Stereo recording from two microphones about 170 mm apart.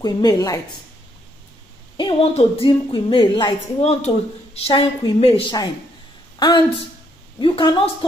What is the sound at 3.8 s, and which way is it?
A woman's voice, 40° left (ahead or behind).